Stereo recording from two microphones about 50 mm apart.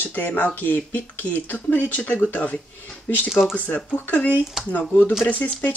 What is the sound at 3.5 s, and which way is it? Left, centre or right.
Speech, left.